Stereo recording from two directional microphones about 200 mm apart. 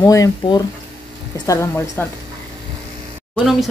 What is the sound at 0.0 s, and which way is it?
Speech, 15° left (ahead or behind).